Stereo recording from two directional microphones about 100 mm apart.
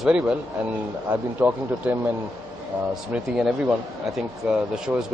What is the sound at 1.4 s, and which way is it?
Speech, 15° right (ahead or behind).